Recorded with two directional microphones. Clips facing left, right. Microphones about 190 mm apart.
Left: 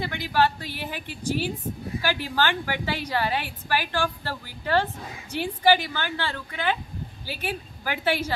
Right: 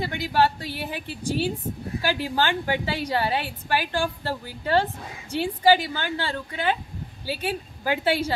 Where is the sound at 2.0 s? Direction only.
25° right (ahead or behind).